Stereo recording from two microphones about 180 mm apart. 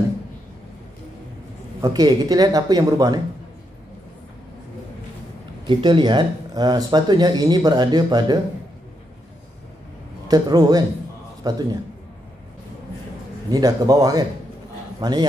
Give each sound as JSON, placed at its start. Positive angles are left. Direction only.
{"t": 1.8, "sound": "speech", "side_deg": -20}
{"t": 5.7, "sound": "speech", "side_deg": -25}
{"t": 10.2, "sound": "speech", "side_deg": -20}
{"t": 13.5, "sound": "speech", "side_deg": -20}